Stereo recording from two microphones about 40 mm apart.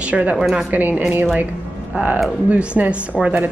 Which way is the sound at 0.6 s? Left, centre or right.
Right.